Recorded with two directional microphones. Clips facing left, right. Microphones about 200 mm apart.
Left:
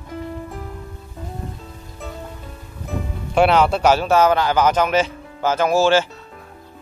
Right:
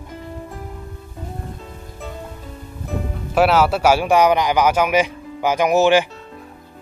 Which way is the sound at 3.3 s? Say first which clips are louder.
Even; 5° right (ahead or behind).